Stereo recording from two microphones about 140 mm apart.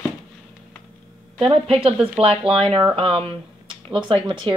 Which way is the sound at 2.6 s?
40° right (ahead or behind).